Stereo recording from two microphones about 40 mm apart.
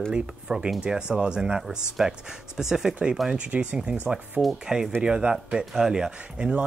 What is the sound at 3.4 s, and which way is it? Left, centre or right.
Speech, right.